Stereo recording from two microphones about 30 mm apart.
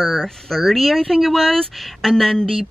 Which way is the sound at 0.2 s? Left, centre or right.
Centre.